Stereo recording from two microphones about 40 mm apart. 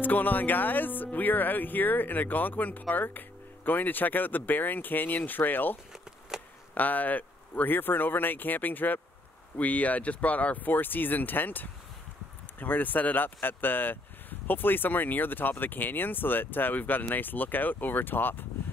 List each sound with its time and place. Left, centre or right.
0.0 s speech: left
6.3 s a sound: centre
6.7 s speech: left
7.7 s speech: left